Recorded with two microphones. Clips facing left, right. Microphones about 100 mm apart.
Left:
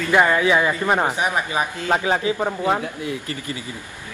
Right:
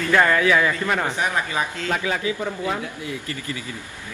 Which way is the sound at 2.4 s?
55° left (ahead or behind).